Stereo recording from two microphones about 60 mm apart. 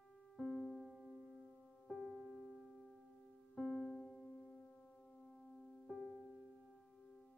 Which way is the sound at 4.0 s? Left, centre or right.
Centre.